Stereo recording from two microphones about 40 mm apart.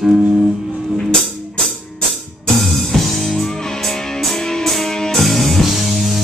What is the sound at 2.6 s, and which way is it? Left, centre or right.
Music, centre.